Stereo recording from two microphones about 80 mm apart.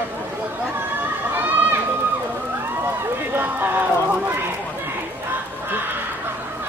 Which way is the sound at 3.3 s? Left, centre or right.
Right.